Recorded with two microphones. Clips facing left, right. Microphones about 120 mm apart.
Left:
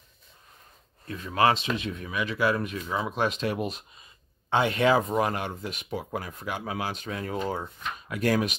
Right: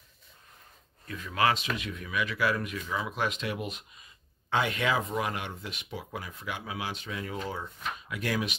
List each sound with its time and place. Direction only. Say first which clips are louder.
1.0 s speech: left 4 dB; 30° left (ahead or behind)